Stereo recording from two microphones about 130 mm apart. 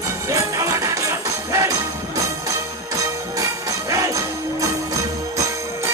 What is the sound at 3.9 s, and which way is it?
Music, 25° right (ahead or behind).